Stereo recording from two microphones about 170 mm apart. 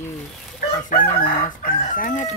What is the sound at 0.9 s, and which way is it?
Chicken, 50° left (ahead or behind).